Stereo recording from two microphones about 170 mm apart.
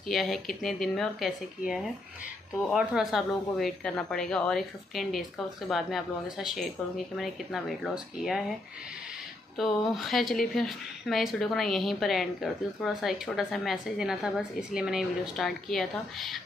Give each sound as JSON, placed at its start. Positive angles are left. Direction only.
{"t": 0.0, "sound": "speech", "side_deg": 0}
{"t": 9.6, "sound": "speech", "side_deg": 0}